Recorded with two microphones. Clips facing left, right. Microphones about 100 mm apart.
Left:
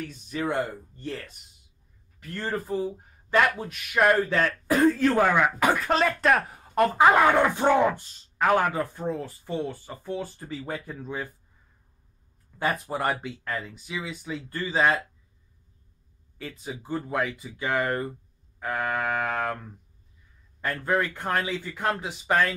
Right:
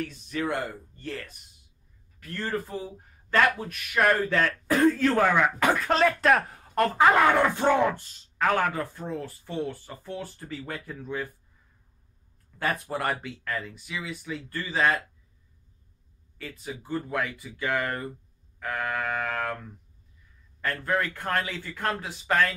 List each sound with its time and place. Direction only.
0.0 s speech: 15° left (ahead or behind)
2.5 s speech: 5° left (ahead or behind)
3.3 s speech: 15° left (ahead or behind)
6.6 s speech: 15° left (ahead or behind)
12.5 s speech: 15° left (ahead or behind)
16.4 s speech: 25° left (ahead or behind)
20.6 s speech: 15° left (ahead or behind)